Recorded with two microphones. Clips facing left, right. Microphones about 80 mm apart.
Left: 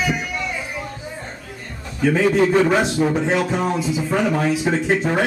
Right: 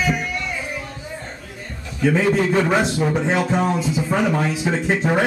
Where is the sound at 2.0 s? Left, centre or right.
Centre.